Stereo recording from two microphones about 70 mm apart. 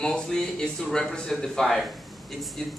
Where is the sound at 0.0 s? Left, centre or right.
Centre.